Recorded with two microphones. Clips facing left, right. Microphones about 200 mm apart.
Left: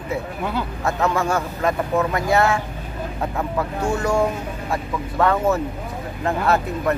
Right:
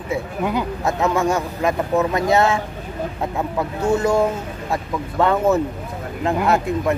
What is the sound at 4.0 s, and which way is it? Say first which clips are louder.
Speech: even; 20° right (ahead or behind).